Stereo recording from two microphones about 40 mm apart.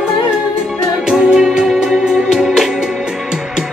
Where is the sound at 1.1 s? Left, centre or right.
Centre.